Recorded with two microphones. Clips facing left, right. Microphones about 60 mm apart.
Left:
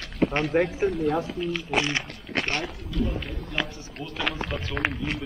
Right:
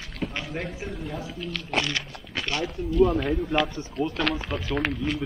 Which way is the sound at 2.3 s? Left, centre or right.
Left.